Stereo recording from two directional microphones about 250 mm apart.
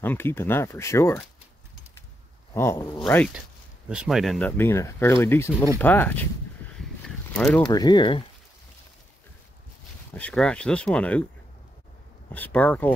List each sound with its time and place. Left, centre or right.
0.0 s speech: centre
2.5 s speech: centre
7.3 s speech: centre
7.6 s speech: centre
10.1 s speech: centre
12.3 s speech: centre